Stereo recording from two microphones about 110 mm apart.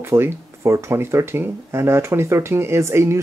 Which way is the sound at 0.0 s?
20° right (ahead or behind).